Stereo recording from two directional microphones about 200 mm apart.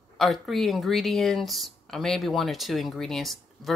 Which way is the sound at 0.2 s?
Centre (ahead or behind).